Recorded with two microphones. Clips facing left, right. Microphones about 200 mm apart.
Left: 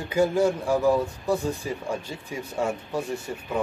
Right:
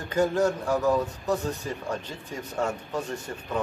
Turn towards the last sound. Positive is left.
turn(degrees=10)  # may be behind; listen again after turning